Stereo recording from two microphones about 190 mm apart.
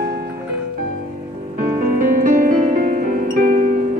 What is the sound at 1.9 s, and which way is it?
Music, 45° right (ahead or behind).